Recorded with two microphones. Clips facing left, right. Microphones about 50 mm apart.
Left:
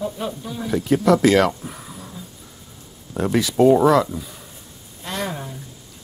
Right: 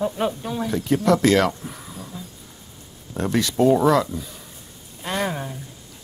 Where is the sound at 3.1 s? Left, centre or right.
Centre.